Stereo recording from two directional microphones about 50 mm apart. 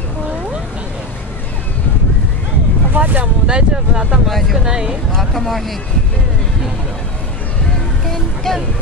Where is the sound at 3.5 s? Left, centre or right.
Centre.